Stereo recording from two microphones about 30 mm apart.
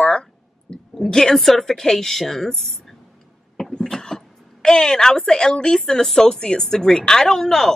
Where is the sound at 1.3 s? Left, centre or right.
Centre.